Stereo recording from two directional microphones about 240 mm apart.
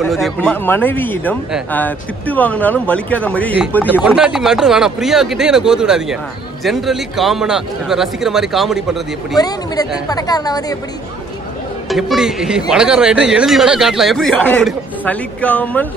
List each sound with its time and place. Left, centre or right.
0.0 s speech: centre
10.0 s speech: centre
11.9 s speech: centre